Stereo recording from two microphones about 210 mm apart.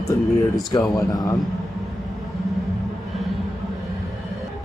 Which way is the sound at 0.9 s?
20° left (ahead or behind).